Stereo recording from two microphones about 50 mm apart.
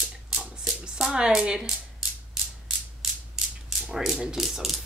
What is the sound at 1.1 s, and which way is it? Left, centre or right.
Speech, centre.